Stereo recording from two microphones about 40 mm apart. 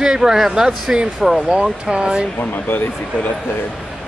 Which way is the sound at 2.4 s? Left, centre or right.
Left.